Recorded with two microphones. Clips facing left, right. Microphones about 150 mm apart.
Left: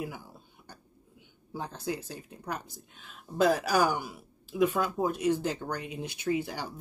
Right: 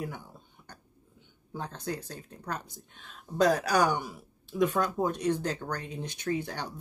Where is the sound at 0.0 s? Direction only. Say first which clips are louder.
Even; 5° left (ahead or behind).